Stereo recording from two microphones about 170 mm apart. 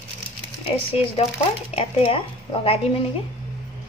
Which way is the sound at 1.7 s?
30° left (ahead or behind).